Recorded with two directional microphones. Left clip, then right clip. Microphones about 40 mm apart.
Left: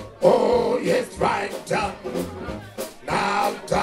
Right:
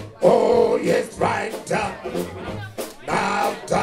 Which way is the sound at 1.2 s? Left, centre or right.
Right.